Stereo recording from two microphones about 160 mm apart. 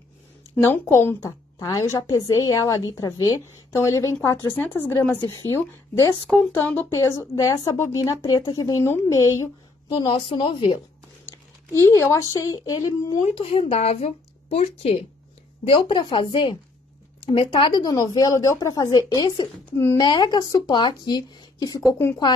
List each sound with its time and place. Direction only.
0.6 s speech: 15° left (ahead or behind); by 10.8 s 30° left (ahead or behind)
11.9 s speech: 20° left (ahead or behind)
13.3 s speech: 35° left (ahead or behind)
19.8 s speech: 15° left (ahead or behind)
20.1 s speech: 25° left (ahead or behind)